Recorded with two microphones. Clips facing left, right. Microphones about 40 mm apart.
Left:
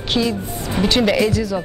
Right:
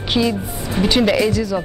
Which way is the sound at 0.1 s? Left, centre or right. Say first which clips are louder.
Right 1 dB; centre.